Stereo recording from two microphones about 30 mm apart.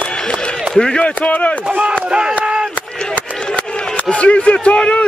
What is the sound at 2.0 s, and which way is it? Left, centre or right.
Speech, right.